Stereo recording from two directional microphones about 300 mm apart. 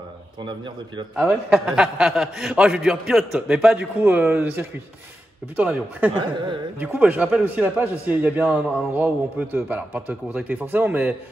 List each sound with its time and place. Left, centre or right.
0.4 s speech: centre
1.1 s a man's voice: centre
6.1 s a man's voice: centre